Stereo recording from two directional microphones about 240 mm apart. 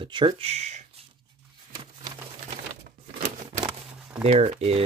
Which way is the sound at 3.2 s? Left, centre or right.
Right.